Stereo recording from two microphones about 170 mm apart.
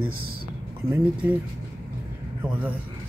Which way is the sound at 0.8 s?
10° right (ahead or behind).